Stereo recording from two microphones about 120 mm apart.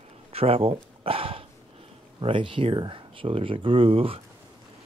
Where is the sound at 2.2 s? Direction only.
45° right (ahead or behind).